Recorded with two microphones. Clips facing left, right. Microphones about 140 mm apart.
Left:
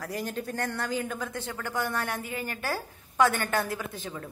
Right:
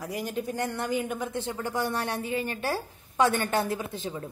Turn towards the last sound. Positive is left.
turn(degrees=-25)  # may be behind; listen again after turning